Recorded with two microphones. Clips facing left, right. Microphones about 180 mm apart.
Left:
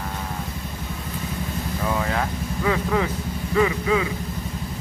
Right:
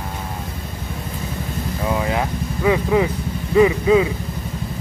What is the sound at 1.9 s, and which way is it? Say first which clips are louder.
Vehicle: right 4 dB; 15° right (ahead or behind).